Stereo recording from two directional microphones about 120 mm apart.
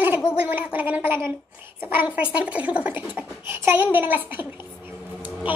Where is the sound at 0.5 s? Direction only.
15° right (ahead or behind).